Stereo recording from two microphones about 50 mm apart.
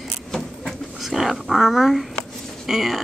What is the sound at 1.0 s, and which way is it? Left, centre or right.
Speech, centre.